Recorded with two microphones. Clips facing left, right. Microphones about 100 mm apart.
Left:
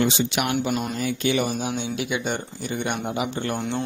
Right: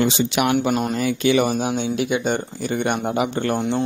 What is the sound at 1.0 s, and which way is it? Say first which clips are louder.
Speech: right 6 dB; 90° right.